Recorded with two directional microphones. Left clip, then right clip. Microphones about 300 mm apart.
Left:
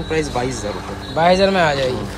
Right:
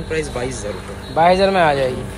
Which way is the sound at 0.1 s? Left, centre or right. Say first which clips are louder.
Left 2 dB; left.